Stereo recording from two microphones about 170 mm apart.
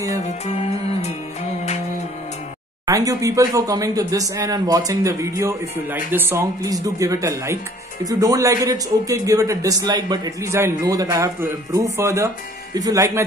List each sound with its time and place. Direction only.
0.2 s music: 40° left (ahead or behind)
2.9 s speech: 20° right (ahead or behind)